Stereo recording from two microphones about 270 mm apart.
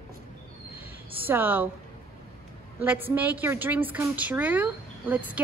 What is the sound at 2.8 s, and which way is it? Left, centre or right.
A woman's voice, centre.